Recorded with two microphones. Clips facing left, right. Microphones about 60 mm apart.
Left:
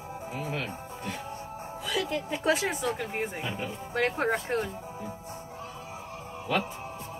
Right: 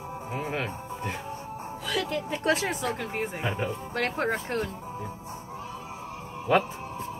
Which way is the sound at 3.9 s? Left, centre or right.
Centre.